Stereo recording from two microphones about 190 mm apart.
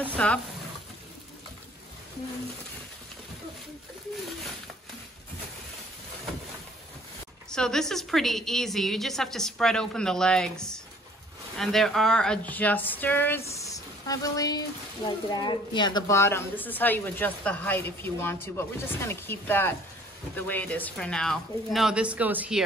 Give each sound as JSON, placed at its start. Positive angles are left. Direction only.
{"t": 0.1, "sound": "speech", "side_deg": 5}
{"t": 7.5, "sound": "a woman's voice", "side_deg": 5}
{"t": 13.6, "sound": "a sound", "side_deg": 15}
{"t": 15.0, "sound": "speech", "side_deg": 25}